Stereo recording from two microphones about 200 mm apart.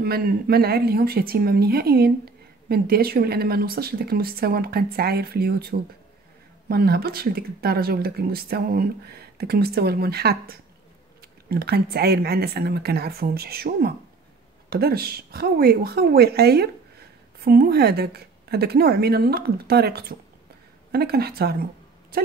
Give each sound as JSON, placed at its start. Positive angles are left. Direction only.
{"t": 0.0, "sound": "a woman's voice", "side_deg": -50}